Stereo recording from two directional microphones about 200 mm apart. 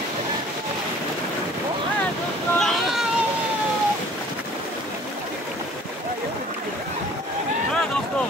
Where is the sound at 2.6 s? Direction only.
Centre (ahead or behind).